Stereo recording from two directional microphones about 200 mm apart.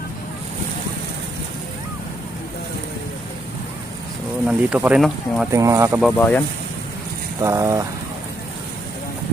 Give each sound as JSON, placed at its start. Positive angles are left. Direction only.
{"t": 4.5, "sound": "speech", "side_deg": -5}
{"t": 5.5, "sound": "speech", "side_deg": -15}
{"t": 6.1, "sound": "speech", "side_deg": 5}
{"t": 7.4, "sound": "speech", "side_deg": -15}